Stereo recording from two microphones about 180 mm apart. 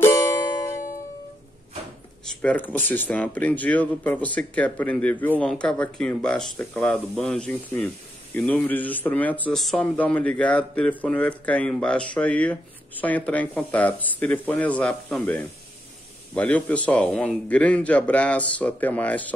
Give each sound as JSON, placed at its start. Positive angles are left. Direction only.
{"t": 0.0, "sound": "music", "side_deg": 15}
{"t": 2.4, "sound": "speech", "side_deg": 10}